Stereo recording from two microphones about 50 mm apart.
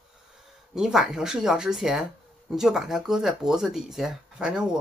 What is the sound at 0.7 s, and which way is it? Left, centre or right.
Speech, centre.